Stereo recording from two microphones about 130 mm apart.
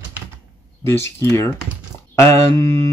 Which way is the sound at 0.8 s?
20° left (ahead or behind).